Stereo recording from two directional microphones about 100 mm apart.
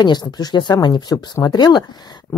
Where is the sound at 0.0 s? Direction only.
45° left (ahead or behind).